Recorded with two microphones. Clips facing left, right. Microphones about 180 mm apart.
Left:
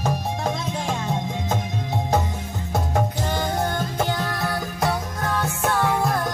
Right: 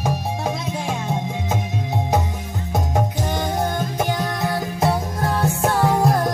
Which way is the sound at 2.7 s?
15° right (ahead or behind).